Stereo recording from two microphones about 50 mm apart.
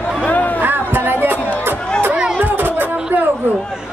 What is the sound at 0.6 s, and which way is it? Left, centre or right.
Music, right.